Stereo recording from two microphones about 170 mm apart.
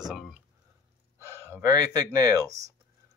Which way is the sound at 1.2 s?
15° right (ahead or behind).